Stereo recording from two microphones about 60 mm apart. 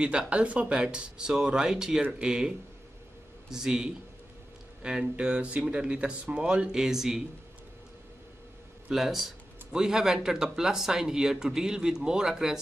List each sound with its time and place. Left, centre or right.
0.0 s speech: centre
8.9 s speech: centre